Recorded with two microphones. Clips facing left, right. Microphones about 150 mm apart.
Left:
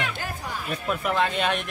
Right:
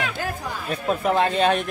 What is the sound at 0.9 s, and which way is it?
Speech, 35° right (ahead or behind).